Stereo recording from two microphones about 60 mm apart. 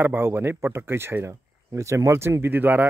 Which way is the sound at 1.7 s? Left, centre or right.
Right.